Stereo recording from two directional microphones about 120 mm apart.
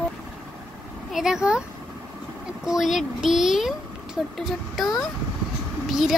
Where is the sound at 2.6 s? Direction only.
5° right (ahead or behind).